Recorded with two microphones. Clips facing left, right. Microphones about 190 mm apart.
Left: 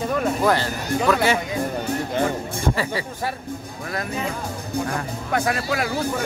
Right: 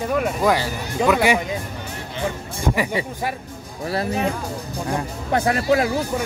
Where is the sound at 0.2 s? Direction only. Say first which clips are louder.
Left 1 dB; 10° right (ahead or behind).